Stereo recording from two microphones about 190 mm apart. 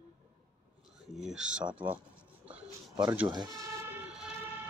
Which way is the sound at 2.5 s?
5° right (ahead or behind).